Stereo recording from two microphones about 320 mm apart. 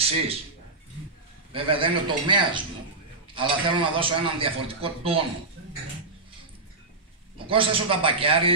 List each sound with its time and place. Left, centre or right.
0.0 s a man's voice: centre
1.5 s a man's voice: centre
7.3 s a man's voice: centre